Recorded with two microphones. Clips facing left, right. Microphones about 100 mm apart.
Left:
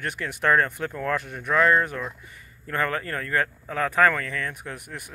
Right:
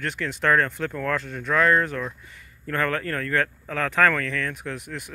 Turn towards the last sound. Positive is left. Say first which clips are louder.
# right 4 dB
turn(degrees=15)  # may be behind; listen again after turning